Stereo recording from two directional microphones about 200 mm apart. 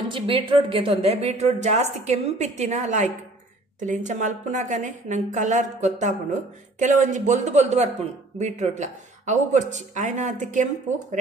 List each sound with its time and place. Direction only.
0.1 s a woman's voice: 25° right (ahead or behind)